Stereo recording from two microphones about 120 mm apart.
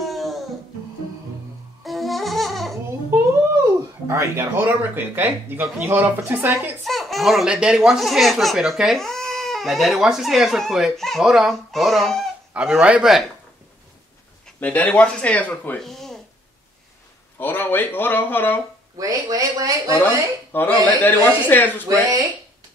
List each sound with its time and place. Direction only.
0.0 s music: centre (ahead or behind)
1.9 s music: centre (ahead or behind)
4.1 s speech: 20° right (ahead or behind)
6.8 s speech: centre (ahead or behind)
14.6 s speech: 10° left (ahead or behind)
15.8 s speech: centre (ahead or behind)
17.4 s speech: 15° left (ahead or behind)
18.9 s speech: 30° right (ahead or behind)
20.5 s speech: 15° left (ahead or behind)
21.8 s speech: 25° right (ahead or behind)